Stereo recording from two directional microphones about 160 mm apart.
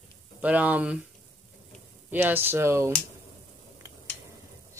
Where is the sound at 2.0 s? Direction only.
10° right (ahead or behind).